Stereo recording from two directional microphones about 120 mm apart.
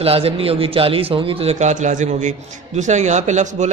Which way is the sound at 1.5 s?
85° right.